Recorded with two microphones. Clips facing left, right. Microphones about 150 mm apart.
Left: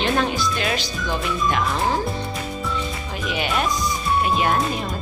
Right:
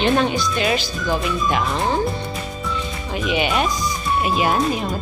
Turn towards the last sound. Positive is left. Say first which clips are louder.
# right 2 dB
turn(degrees=0)  # may be behind; listen again after turning